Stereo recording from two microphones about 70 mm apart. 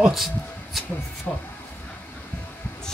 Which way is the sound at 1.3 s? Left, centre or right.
Centre.